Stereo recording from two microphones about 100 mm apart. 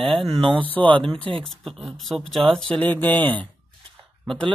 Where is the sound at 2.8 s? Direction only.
20° left (ahead or behind).